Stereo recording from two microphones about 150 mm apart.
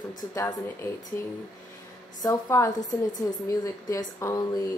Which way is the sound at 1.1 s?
20° left (ahead or behind).